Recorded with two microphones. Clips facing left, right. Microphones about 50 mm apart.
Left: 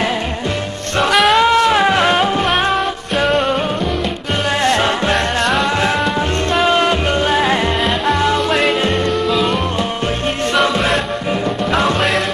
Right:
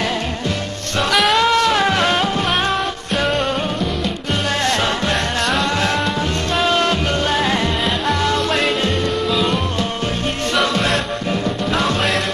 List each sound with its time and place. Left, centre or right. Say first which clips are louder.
1.3 s music: left 3 dB; centre
4.6 s music: left 5 dB; centre
5.1 s music: left 3 dB; centre
6.5 s music: left 3 dB; centre